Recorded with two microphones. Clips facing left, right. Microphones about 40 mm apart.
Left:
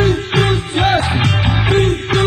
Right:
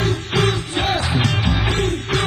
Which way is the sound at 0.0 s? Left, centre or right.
Left.